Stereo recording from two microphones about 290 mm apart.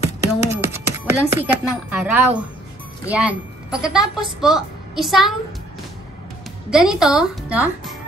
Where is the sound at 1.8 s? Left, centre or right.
Centre.